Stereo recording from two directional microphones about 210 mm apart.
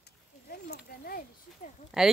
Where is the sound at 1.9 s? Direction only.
Centre (ahead or behind).